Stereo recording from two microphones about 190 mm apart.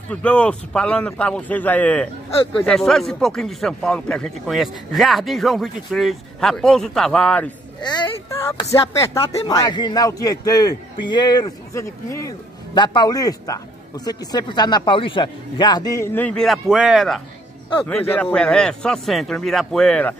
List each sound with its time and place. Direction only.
0.1 s a man's voice: 5° left (ahead or behind)
7.8 s a man's voice: 20° left (ahead or behind); by 17.2 s centre (ahead or behind)
17.8 s speech: 10° left (ahead or behind)